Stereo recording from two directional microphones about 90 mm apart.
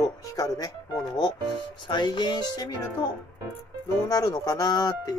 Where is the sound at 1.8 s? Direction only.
60° left (ahead or behind).